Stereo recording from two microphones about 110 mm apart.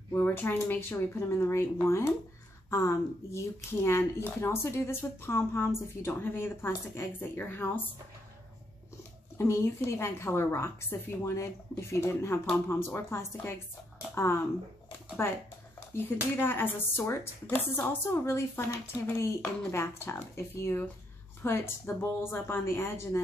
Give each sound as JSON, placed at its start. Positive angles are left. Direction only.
{"t": 0.1, "sound": "speech", "side_deg": 20}
{"t": 9.5, "sound": "speech", "side_deg": 25}
{"t": 15.9, "sound": "speech", "side_deg": 20}